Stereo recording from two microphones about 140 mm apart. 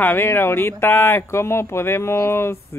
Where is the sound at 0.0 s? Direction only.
15° left (ahead or behind).